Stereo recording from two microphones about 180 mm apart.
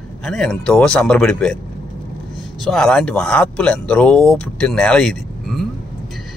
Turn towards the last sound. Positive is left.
turn(degrees=5)  # may be behind; listen again after turning